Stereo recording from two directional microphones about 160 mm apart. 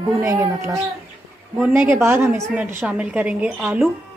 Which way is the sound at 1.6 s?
5° right (ahead or behind).